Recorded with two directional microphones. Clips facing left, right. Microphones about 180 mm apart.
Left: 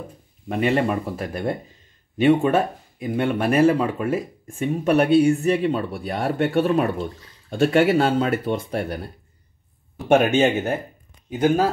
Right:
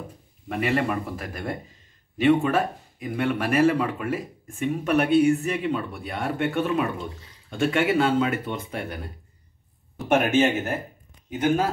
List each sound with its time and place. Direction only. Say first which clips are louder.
0.5 s speech: left 4 dB; 25° left (ahead or behind)